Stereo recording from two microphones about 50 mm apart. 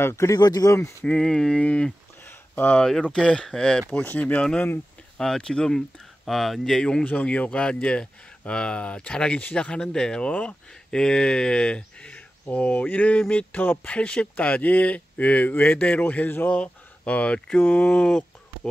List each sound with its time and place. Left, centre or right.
0.0 s speech: left
1.0 s speech: centre
1.6 s speech: left
2.2 s a sound: left
3.0 s speech: centre
4.2 s speech: left
5.1 s speech: centre
6.2 s speech: centre
6.8 s speech: centre; by 13.9 s left
13.9 s speech: left
16.5 s speech: left
17.6 s speech: left
17.9 s a sound: centre